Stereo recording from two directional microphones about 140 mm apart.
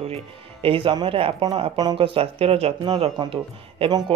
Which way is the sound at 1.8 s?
30° right (ahead or behind).